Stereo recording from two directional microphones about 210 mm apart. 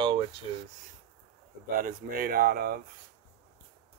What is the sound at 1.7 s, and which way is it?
Speech, 45° right (ahead or behind).